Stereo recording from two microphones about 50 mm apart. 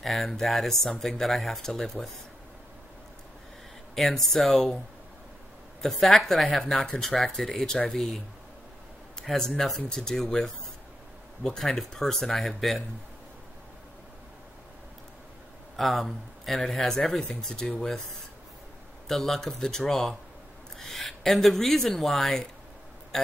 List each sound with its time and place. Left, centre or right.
0.0 s speech: centre
3.9 s speech: centre
5.8 s speech: centre
9.2 s speech: centre
15.7 s speech: centre
19.0 s speech: centre